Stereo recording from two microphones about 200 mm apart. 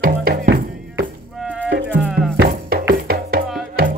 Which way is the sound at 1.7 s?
55° right (ahead or behind).